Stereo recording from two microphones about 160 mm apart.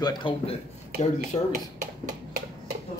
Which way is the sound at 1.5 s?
55° right (ahead or behind).